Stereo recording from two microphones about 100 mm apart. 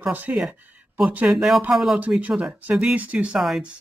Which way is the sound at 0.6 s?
15° right (ahead or behind).